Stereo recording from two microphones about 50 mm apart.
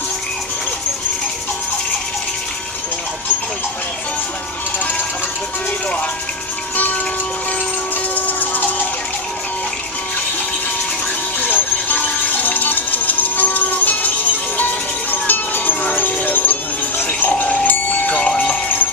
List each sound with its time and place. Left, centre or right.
8.1 s a sound: left
11.4 s music: left
14.6 s wind chime: left
17.3 s bell: left
18.3 s music: centre